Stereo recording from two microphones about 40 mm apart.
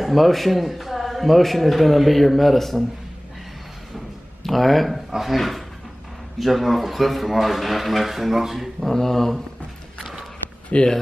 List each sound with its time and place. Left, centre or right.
0.0 s a man's voice: centre
4.4 s a man's voice: centre
8.8 s speech: centre
10.7 s speech: left